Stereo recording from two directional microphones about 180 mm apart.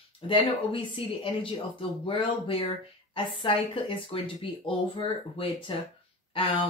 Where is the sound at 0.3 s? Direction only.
30° left (ahead or behind).